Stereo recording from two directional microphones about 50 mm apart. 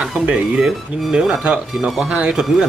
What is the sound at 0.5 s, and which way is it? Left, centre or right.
Speech, centre.